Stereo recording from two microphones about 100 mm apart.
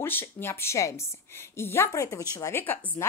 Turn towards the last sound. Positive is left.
turn(degrees=20)  # may be behind; listen again after turning